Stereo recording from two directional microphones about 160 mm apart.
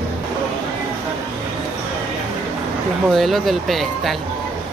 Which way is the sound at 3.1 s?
Centre (ahead or behind).